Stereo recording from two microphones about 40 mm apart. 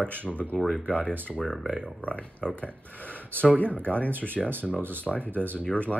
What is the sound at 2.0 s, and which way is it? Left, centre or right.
Speech, left.